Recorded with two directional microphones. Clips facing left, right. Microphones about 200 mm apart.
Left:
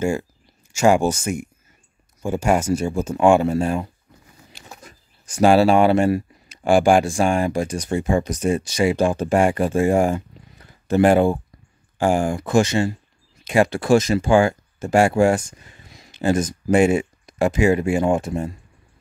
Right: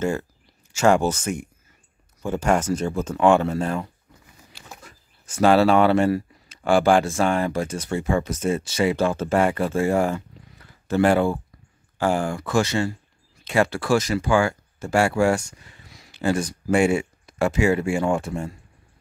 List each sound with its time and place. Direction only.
0.0 s speech: 10° left (ahead or behind)